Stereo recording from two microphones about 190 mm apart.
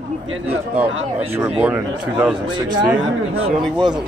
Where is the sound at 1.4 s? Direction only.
10° right (ahead or behind).